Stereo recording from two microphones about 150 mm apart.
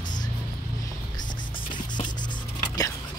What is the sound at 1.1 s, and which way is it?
Music, 30° left (ahead or behind).